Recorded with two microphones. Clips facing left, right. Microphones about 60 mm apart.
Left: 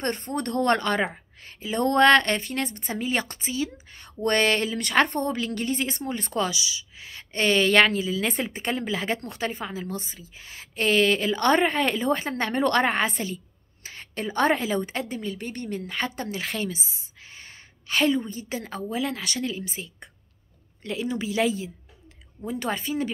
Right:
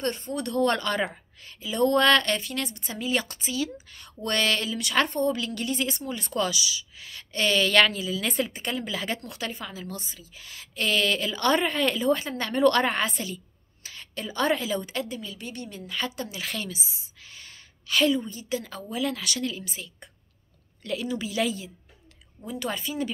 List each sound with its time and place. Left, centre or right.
0.0 s speech: left
6.4 s a woman's voice: left